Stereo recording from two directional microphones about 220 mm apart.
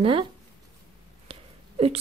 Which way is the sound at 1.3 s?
25° right (ahead or behind).